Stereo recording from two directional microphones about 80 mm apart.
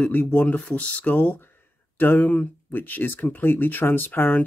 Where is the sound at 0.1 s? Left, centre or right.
Left.